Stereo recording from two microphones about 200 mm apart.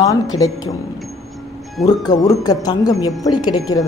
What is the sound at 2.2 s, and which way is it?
Speech, 20° left (ahead or behind).